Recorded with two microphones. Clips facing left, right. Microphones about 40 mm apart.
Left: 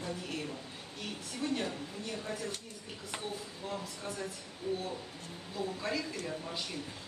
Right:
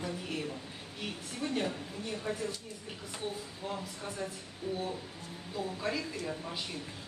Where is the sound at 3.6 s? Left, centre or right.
Centre.